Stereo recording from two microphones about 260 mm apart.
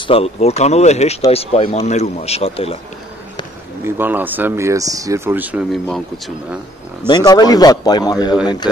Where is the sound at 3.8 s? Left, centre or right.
Centre.